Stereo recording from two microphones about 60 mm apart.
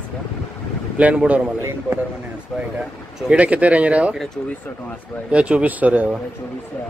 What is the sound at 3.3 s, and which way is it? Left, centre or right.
Speech, right.